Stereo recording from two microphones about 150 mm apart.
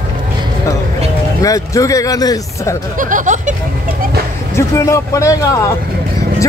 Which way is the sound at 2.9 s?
60° right (ahead or behind).